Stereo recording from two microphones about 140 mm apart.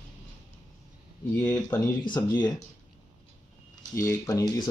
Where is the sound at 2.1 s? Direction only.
30° left (ahead or behind).